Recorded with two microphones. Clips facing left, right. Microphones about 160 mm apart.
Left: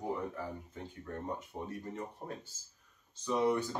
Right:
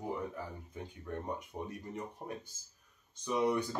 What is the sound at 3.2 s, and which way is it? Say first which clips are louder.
Speech: left 1 dB; 15° right (ahead or behind).